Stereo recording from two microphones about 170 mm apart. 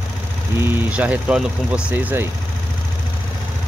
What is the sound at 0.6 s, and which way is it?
Speech, 10° right (ahead or behind).